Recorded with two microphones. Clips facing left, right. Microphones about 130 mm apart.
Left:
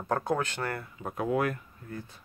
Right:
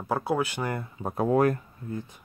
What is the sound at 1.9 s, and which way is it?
Speech, 20° right (ahead or behind).